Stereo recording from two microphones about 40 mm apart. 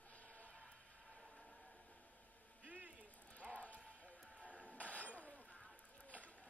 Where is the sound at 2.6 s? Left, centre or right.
Right.